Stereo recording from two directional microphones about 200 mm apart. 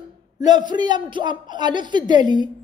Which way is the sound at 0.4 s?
20° right (ahead or behind).